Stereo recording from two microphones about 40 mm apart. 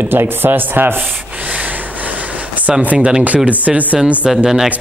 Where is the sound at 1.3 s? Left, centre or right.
Right.